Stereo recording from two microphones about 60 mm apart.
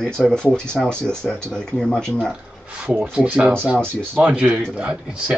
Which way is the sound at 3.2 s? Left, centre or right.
Right.